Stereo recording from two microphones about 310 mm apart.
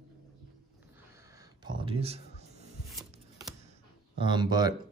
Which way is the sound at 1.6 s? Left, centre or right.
Centre.